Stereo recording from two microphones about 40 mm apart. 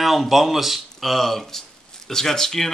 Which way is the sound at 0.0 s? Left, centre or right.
Centre.